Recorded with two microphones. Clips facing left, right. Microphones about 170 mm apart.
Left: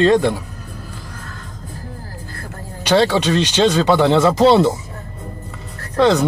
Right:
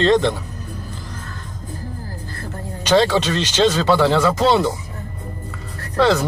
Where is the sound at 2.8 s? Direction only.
10° left (ahead or behind); by 4.7 s 30° left (ahead or behind).